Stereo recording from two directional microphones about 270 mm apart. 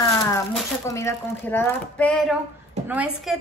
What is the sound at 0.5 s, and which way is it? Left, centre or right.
Speech, centre.